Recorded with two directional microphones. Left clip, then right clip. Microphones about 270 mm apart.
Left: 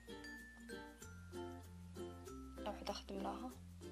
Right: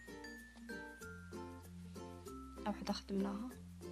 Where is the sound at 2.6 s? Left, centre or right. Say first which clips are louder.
Right 3 dB; right.